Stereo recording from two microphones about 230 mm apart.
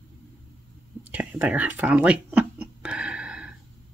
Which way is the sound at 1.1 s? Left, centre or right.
Centre.